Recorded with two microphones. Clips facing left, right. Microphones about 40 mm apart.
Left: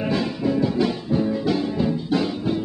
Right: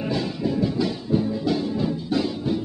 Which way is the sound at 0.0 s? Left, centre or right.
Left.